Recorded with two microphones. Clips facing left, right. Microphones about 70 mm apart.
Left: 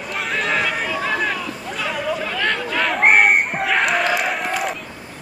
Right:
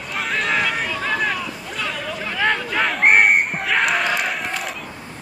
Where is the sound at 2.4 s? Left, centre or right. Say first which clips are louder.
Right 5 dB; centre.